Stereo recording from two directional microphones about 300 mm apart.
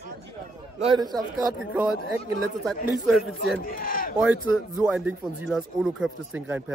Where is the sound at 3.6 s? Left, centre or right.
Left.